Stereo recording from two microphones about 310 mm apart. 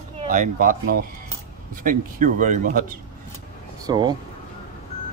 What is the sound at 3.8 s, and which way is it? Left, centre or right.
Speech, centre.